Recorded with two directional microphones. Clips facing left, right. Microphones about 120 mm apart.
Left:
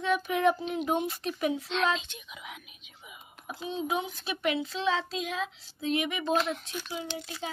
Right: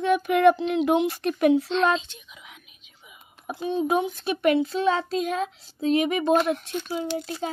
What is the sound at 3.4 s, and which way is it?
A child's voice, 50° right (ahead or behind).